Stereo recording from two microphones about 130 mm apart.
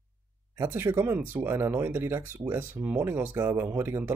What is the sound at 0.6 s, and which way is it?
Speech, 20° right (ahead or behind).